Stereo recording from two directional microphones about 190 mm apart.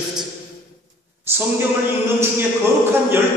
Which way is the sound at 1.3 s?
10° right (ahead or behind).